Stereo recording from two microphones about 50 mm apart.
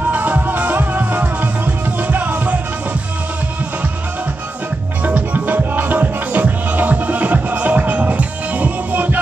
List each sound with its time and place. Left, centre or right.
0.1 s music: right
5.0 s music: right